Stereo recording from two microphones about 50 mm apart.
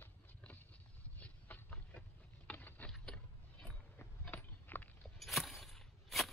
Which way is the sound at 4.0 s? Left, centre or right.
Left.